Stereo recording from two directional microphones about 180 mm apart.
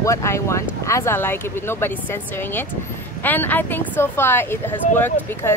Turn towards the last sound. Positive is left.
turn(degrees=10)  # may be behind; listen again after turning